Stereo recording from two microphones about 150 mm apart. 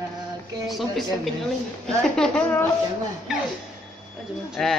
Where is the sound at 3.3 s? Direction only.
Centre (ahead or behind).